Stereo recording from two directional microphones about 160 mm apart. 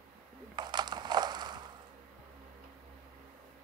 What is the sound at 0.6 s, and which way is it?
Crushing, 25° right (ahead or behind).